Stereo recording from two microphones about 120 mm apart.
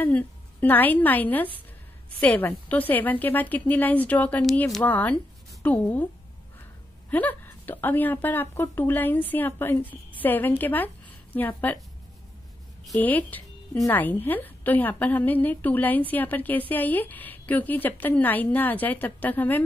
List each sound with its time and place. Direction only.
0.0 s a woman's voice: 15° left (ahead or behind)
7.1 s a woman's voice: 15° left (ahead or behind)
13.0 s a woman's voice: 15° left (ahead or behind)